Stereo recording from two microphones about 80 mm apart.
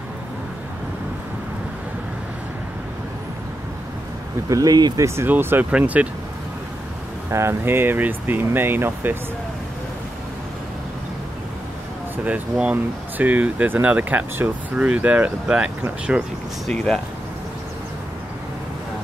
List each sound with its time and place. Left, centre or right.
4.5 s speech: right
5.0 s speech: right; by 6.0 s centre
7.2 s speech: right
12.3 s speech: centre
16.6 s speech: centre